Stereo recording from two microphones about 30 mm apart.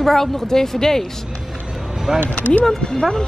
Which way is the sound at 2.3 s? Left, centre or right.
Left.